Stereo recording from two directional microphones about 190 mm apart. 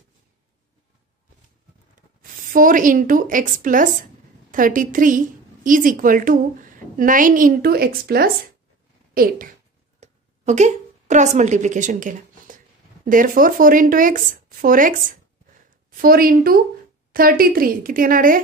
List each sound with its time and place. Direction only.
2.5 s a woman's voice: 45° right (ahead or behind)
9.9 s a woman's voice: 35° right (ahead or behind)